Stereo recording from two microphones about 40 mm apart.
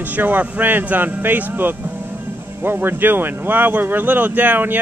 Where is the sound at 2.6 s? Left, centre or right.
Right.